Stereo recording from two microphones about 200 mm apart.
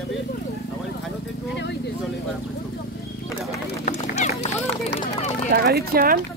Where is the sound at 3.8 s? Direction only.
40° left (ahead or behind).